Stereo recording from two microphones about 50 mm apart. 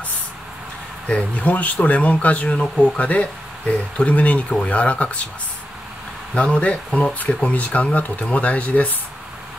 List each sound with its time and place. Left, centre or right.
1.0 s speech: left
6.3 s speech: left